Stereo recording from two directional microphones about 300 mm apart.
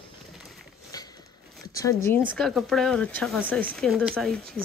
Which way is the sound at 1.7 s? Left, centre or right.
Centre.